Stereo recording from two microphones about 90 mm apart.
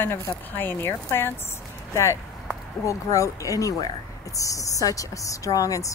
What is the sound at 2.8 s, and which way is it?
A woman's voice, 35° left (ahead or behind).